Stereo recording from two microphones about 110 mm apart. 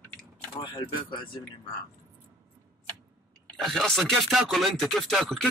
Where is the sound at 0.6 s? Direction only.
40° left (ahead or behind).